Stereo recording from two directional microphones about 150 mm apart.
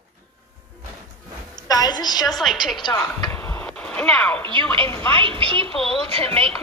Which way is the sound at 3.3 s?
15° left (ahead or behind).